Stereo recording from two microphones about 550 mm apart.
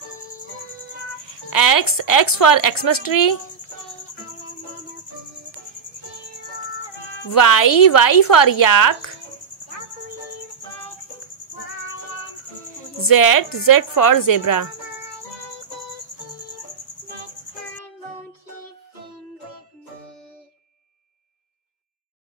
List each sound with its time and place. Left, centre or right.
1.2 s speech: left
7.2 s a woman's voice: left
13.0 s a woman's voice: left